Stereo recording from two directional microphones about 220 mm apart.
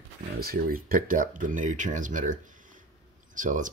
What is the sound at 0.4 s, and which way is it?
Speech, 40° right (ahead or behind).